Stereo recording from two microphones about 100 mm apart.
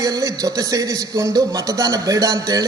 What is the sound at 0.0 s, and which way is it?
A man's voice, 40° right (ahead or behind).